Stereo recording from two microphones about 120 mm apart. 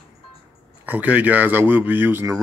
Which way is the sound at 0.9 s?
10° right (ahead or behind).